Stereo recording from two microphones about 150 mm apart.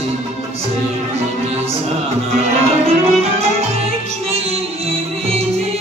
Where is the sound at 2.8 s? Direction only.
40° right (ahead or behind).